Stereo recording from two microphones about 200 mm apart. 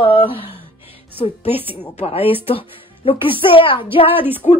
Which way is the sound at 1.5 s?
10° right (ahead or behind).